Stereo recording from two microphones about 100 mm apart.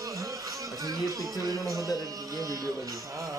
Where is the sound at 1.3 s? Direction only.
35° right (ahead or behind).